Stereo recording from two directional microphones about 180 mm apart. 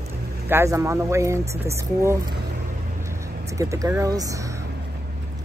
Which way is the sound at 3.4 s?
15° right (ahead or behind).